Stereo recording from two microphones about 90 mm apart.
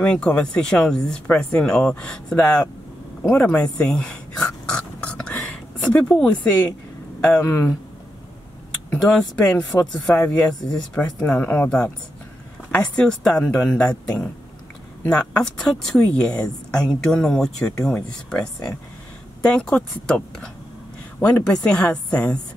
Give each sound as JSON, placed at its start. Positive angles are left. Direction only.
{"t": 0.0, "sound": "speech", "side_deg": 10}
{"t": 3.2, "sound": "a sound", "side_deg": 10}
{"t": 7.2, "sound": "speech", "side_deg": 20}
{"t": 9.3, "sound": "speech", "side_deg": 10}
{"t": 15.0, "sound": "speech", "side_deg": 10}